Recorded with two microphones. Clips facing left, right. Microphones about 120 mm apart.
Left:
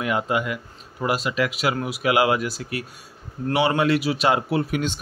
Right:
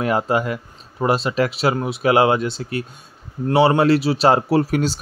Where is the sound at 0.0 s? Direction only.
35° right (ahead or behind).